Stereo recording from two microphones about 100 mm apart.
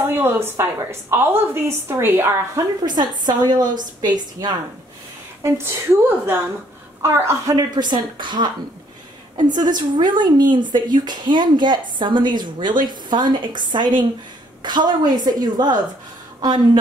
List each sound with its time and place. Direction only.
0.0 s a woman's voice: 20° right (ahead or behind)
2.8 s a woman's voice: 45° right (ahead or behind)
5.4 s a woman's voice: 25° right (ahead or behind)
7.5 s a woman's voice: 45° right (ahead or behind)